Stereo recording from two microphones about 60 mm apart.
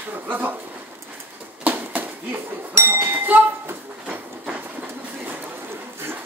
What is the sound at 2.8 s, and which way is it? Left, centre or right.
Speech, right.